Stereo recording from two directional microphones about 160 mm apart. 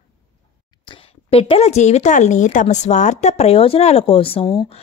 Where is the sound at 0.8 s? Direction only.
35° left (ahead or behind).